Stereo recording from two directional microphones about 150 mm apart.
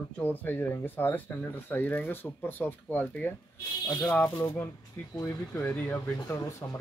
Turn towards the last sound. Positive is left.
turn(degrees=20)  # may be behind; listen again after turning